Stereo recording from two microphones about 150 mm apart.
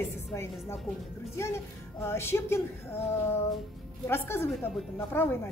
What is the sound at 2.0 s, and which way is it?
A woman's voice, 15° left (ahead or behind).